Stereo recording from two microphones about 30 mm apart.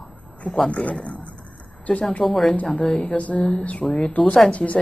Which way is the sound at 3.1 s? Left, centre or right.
Left.